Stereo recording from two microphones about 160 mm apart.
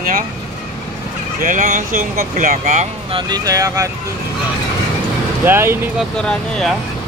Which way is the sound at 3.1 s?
25° right (ahead or behind).